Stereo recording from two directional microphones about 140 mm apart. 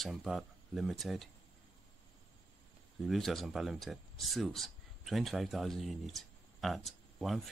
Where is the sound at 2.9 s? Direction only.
Centre (ahead or behind).